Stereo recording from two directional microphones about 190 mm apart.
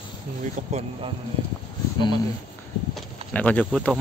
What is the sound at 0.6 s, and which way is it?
Speech, 40° right (ahead or behind).